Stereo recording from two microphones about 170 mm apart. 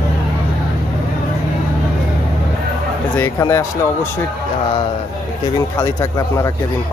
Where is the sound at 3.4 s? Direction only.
15° left (ahead or behind).